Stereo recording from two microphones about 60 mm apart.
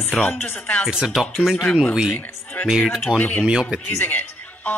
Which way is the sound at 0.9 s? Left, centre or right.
Centre.